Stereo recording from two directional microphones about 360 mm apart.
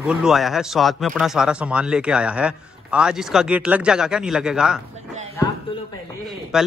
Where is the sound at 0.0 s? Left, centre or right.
Centre.